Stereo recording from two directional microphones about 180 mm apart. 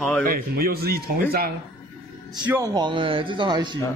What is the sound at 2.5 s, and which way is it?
A man's voice, 20° right (ahead or behind).